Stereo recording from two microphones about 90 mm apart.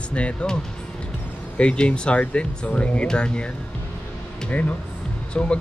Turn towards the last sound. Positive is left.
turn(degrees=10)  # may be behind; listen again after turning